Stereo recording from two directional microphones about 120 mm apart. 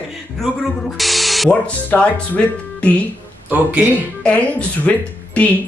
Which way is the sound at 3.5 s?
10° right (ahead or behind).